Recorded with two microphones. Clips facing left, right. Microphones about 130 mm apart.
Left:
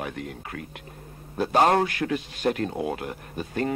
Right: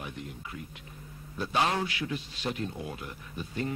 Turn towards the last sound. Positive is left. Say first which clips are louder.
# left 6 dB
turn(degrees=70)  # may be behind; listen again after turning